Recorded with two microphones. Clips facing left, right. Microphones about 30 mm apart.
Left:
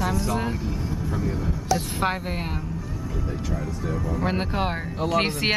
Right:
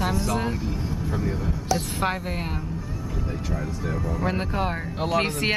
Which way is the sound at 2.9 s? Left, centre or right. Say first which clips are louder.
Left 1 dB; centre.